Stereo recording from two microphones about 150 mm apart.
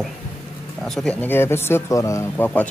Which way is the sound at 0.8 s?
5° left (ahead or behind).